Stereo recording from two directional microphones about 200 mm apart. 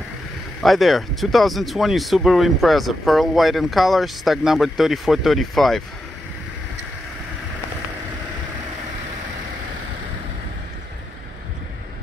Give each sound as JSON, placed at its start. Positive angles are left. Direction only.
{"t": 0.6, "sound": "speech", "side_deg": 0}